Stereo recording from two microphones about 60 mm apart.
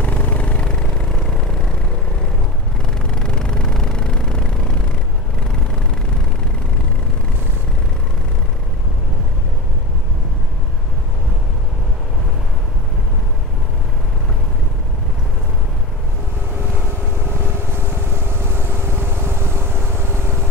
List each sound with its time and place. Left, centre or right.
0.0 s vehicle: left
3.1 s a sound: centre
17.6 s vehicle: right